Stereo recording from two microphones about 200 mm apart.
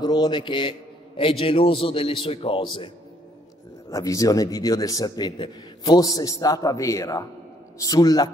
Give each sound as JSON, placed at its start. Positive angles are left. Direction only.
{"t": 0.0, "sound": "a man's voice", "side_deg": 20}
{"t": 3.9, "sound": "a man's voice", "side_deg": 15}